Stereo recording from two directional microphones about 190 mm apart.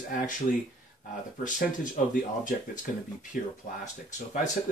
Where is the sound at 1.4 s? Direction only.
45° left (ahead or behind).